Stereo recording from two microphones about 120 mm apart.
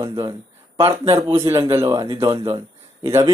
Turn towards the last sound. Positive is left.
turn(degrees=-25)  # may be behind; listen again after turning